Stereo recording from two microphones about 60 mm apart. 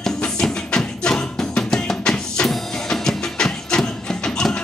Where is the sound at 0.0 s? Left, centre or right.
Centre.